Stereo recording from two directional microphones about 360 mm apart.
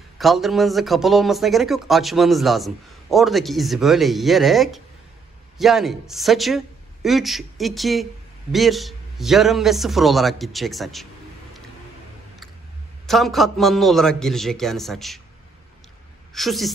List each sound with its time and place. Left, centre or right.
0.2 s speech: centre
13.0 s speech: centre
16.3 s speech: centre